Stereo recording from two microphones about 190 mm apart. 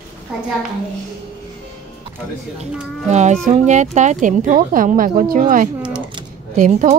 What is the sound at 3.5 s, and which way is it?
A woman's voice, 40° right (ahead or behind).